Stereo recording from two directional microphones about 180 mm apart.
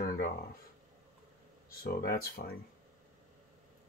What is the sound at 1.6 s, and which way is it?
Speech, 55° left (ahead or behind).